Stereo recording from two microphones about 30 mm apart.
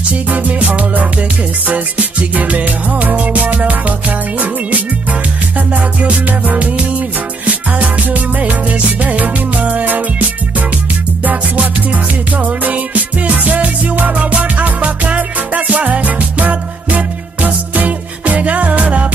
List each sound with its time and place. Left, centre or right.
0.3 s music: right
2.3 s music: right
6.0 s music: right
9.8 s music: right
11.5 s music: right
14.1 s music: right
14.4 s music: right